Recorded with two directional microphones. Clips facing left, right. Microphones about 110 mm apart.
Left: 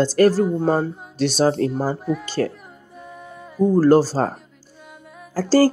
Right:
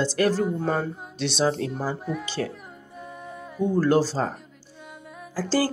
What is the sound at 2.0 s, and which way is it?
Speech, centre (ahead or behind).